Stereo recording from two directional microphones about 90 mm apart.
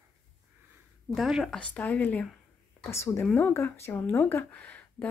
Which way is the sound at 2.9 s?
30° left (ahead or behind).